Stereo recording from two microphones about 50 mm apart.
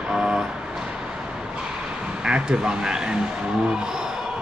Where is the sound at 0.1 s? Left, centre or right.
Centre.